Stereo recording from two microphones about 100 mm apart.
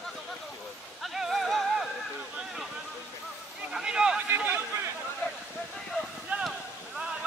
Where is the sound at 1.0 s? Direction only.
Centre (ahead or behind).